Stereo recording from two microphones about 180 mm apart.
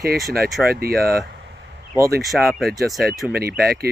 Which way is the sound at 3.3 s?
60° right (ahead or behind).